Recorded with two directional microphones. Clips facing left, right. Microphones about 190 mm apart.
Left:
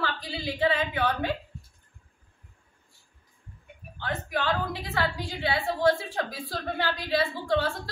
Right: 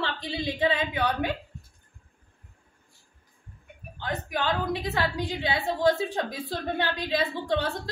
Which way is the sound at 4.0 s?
15° right (ahead or behind).